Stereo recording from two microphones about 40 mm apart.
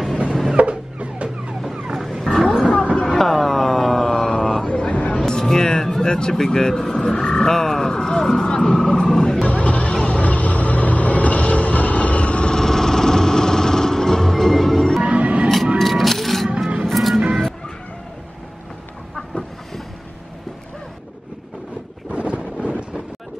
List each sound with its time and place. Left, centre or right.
0.6 s music: right
2.0 s roaring cats: centre
2.9 s a sound: centre
4.6 s a sound: left
5.2 s music: centre
6.3 s speech: centre
9.5 s vehicle: left
12.5 s music: centre
15.0 s vehicle: right
15.8 s a sound: centre
16.4 s music: right
16.8 s music: centre
19.1 s chicken: centre
22.1 s wind noise: right